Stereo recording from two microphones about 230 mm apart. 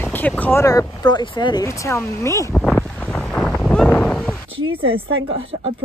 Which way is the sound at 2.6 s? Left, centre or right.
Centre.